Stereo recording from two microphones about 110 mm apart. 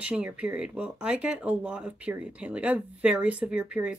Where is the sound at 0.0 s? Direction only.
10° right (ahead or behind).